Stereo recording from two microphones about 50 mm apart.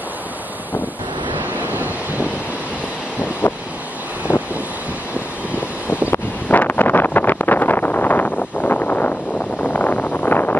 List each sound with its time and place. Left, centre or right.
1.4 s waves: right
4.3 s vehicle: left
6.5 s wind noise: left